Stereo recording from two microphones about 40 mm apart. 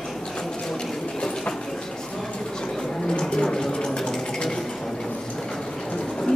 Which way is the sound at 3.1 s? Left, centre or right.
Centre.